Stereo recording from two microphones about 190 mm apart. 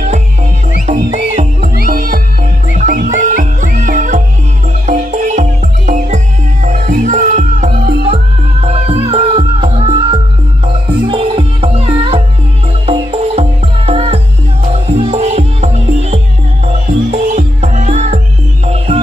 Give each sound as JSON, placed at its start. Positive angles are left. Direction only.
{"t": 0.8, "sound": "music", "side_deg": -40}